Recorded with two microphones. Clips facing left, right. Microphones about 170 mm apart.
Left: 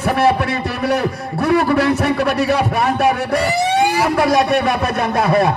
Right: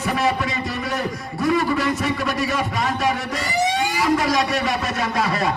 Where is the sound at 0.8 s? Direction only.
75° left (ahead or behind).